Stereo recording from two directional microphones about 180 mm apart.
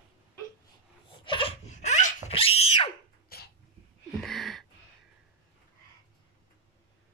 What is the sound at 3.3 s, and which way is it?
Dog, 60° left (ahead or behind).